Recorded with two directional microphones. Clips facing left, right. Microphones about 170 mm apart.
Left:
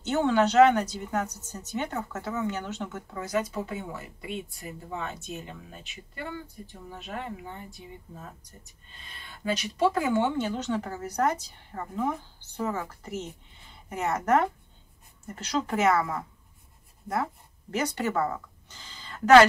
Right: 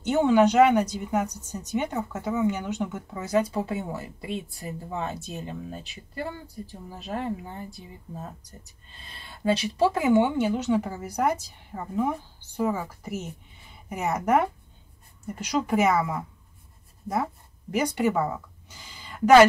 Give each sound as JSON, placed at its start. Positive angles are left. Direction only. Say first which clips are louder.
{"t": 0.0, "sound": "a woman's voice", "louder": "right 4 dB", "side_deg": -15}
{"t": 3.2, "sound": "a woman's voice", "louder": "right 5 dB", "side_deg": -30}
{"t": 10.0, "sound": "a woman's voice", "louder": "right 5 dB", "side_deg": -15}
{"t": 17.1, "sound": "a sound", "louder": "right 2 dB", "side_deg": -15}